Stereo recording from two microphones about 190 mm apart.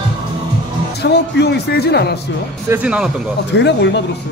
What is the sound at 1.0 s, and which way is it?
Speech, 60° left (ahead or behind).